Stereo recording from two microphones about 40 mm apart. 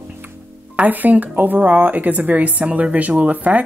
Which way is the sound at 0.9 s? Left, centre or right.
Right.